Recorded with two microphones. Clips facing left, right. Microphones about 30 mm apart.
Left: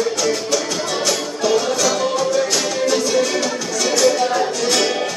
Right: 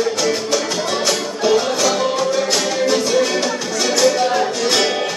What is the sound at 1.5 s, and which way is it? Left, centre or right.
Music, centre.